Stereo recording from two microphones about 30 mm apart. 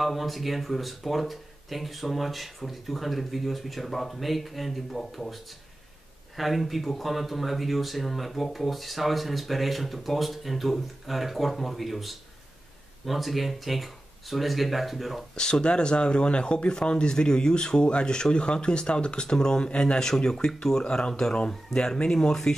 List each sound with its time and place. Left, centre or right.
0.0 s speech: centre
6.3 s speech: centre
15.3 s speech: left
20.0 s speech: centre